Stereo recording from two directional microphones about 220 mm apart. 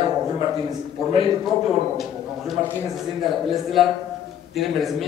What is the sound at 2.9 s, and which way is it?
A man's voice, centre (ahead or behind).